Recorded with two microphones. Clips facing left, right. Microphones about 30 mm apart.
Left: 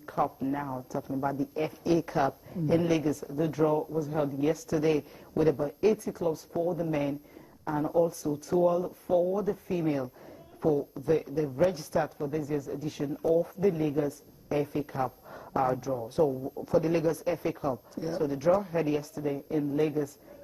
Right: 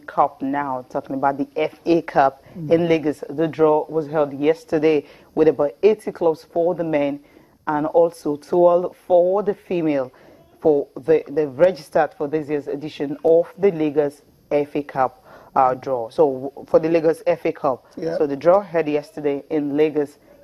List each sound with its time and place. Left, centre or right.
0.0 s speech: right